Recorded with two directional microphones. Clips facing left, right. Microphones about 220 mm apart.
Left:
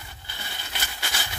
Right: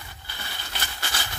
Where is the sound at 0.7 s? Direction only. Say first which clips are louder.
Even; 10° left (ahead or behind).